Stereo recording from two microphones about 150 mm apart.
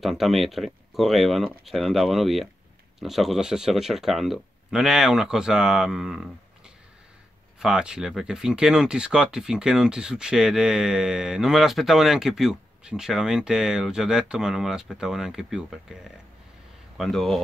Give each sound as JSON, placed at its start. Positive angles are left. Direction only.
{"t": 0.0, "sound": "speech", "side_deg": 0}
{"t": 7.6, "sound": "speech", "side_deg": -5}